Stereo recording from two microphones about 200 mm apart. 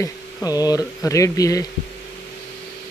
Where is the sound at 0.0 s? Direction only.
15° left (ahead or behind).